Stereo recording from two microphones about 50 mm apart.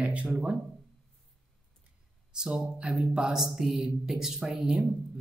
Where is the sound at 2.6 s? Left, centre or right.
Centre.